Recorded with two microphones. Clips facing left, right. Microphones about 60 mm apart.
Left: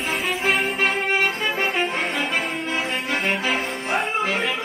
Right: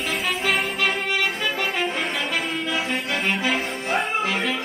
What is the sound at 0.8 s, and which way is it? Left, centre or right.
Music, left.